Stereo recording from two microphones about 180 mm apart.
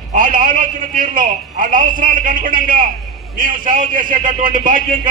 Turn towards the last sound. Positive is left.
turn(degrees=-50)  # may be behind; listen again after turning